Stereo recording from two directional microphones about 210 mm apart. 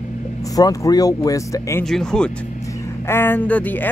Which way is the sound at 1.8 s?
5° left (ahead or behind).